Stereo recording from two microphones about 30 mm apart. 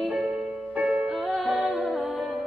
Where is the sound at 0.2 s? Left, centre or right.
Right.